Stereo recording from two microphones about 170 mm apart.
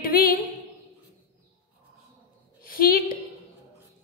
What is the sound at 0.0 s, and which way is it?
Speech, 60° left (ahead or behind).